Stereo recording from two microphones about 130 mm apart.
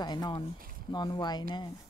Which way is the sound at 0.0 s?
35° left (ahead or behind).